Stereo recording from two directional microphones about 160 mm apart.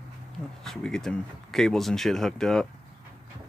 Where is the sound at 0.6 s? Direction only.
Centre (ahead or behind).